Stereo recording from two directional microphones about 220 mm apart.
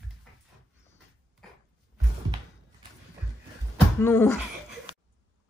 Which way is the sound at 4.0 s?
10° left (ahead or behind).